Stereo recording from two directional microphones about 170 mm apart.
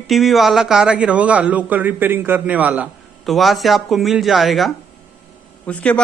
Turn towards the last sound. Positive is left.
turn(degrees=10)  # may be behind; listen again after turning